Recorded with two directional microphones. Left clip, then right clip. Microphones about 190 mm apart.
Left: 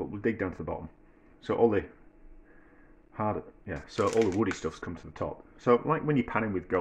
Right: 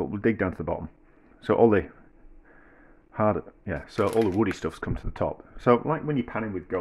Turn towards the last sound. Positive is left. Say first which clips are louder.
# left 1 dB
turn(degrees=0)  # may be behind; listen again after turning